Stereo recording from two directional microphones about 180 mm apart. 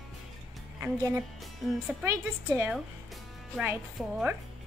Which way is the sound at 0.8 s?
15° right (ahead or behind).